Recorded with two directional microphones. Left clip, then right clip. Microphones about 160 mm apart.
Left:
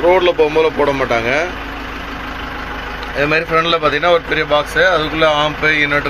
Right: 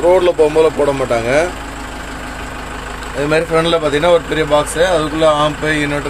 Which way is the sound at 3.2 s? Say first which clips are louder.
Right 1 dB; 15° right (ahead or behind).